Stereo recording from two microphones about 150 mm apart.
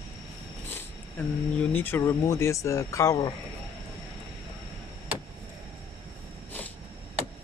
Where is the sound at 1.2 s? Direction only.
15° left (ahead or behind).